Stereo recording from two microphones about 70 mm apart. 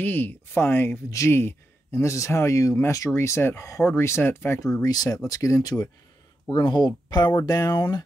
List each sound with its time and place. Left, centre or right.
0.0 s speech: left
3.2 s speech: left
4.8 s speech: left
5.6 s speech: left
6.5 s speech: left
7.4 s speech: left